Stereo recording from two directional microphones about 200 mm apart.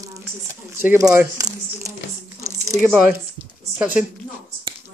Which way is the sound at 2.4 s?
15° right (ahead or behind).